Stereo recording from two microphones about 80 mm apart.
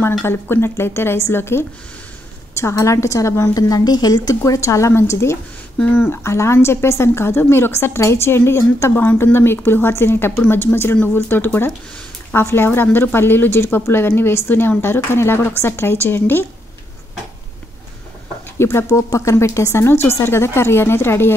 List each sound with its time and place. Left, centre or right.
0.2 s a woman's voice: left
4.6 s a woman's voice: left
18.6 s a woman's voice: left